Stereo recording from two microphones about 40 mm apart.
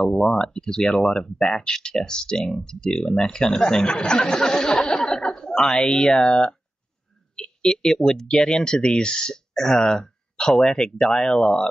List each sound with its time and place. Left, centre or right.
0.1 s speech: centre
9.5 s speech: centre